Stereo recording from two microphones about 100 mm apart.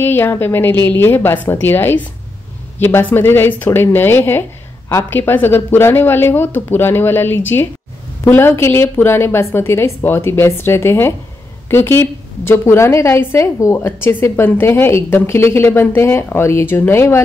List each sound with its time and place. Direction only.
0.0 s speech: 20° left (ahead or behind)